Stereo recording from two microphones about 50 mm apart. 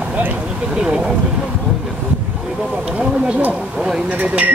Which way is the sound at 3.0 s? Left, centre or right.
Right.